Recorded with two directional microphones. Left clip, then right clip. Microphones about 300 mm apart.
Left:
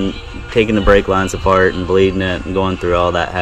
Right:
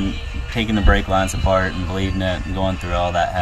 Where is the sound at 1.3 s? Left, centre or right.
Left.